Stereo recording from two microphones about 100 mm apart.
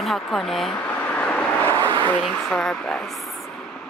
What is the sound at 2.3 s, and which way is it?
Speech, 5° left (ahead or behind).